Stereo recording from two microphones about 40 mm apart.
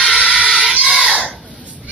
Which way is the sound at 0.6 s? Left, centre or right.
Centre.